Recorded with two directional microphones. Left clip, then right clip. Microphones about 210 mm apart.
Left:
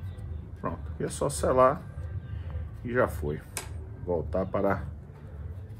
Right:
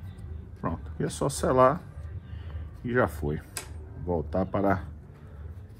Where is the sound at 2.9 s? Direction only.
50° right (ahead or behind).